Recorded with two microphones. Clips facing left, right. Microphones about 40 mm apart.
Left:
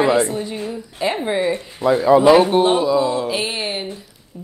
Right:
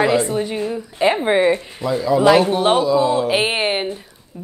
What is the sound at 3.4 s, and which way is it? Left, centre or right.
Speech, right.